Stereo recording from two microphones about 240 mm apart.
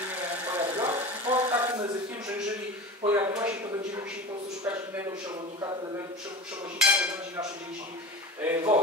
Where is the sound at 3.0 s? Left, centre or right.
Centre.